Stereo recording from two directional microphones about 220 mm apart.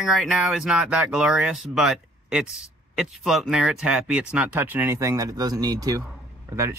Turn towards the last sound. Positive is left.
turn(degrees=-10)  # may be behind; listen again after turning